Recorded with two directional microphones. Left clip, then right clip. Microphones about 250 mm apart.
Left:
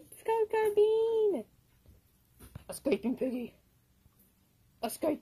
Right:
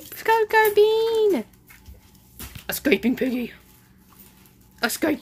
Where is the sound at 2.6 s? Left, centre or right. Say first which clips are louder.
Right 11 dB; centre.